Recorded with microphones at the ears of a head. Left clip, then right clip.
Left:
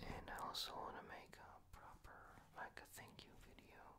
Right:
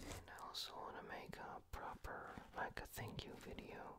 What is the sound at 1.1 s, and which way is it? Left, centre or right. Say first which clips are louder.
Whispering: right 7 dB; right.